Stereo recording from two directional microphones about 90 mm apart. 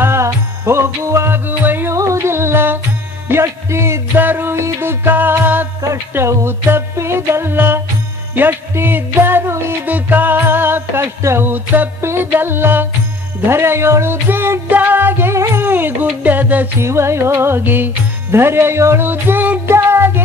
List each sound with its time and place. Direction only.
0.0 s music: 30° right (ahead or behind)
2.0 s music: 35° right (ahead or behind); by 16.6 s 20° right (ahead or behind)
16.8 s music: 30° right (ahead or behind)